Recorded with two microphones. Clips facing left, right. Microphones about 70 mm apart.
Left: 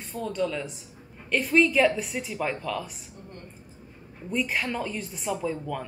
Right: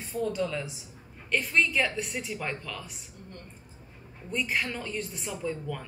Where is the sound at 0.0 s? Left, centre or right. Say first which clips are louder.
Left 1 dB; centre.